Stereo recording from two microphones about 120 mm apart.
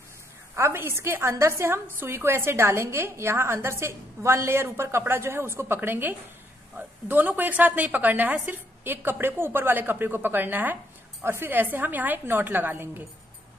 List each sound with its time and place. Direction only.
0.6 s a woman's voice: 20° right (ahead or behind)